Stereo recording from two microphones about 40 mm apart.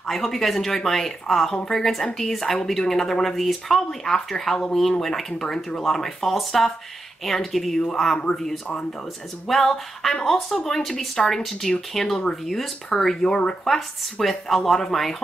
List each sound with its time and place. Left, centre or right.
0.0 s speech: centre
9.5 s speech: centre
14.2 s speech: centre